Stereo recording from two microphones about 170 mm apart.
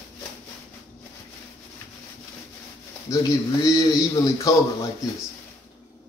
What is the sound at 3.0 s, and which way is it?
Speech, 20° left (ahead or behind).